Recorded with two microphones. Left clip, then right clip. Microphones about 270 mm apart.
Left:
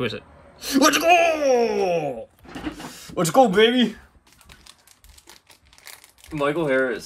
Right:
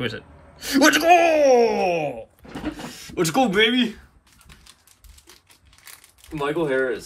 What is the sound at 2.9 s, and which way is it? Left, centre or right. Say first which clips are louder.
Speech: left 1 dB; centre.